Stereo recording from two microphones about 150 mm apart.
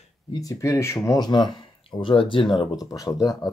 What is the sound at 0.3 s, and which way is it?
Speech, 25° left (ahead or behind).